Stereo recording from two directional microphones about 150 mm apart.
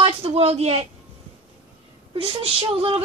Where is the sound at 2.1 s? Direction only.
40° right (ahead or behind).